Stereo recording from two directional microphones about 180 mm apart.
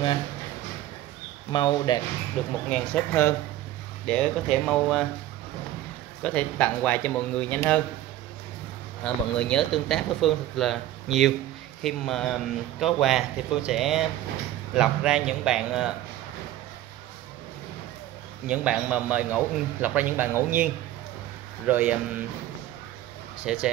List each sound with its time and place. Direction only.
1.5 s speech: 25° left (ahead or behind)
2.4 s speech: 5° left (ahead or behind)
6.2 s speech: 10° left (ahead or behind)
9.0 s speech: 5° left (ahead or behind)
18.5 s a man's voice: 5° right (ahead or behind)
23.4 s speech: 5° right (ahead or behind)